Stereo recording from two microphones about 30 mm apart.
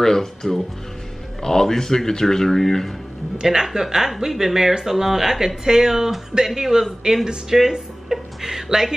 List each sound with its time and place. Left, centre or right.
0.0 s speech: centre
3.3 s speech: right
3.6 s speech: centre
8.1 s music: centre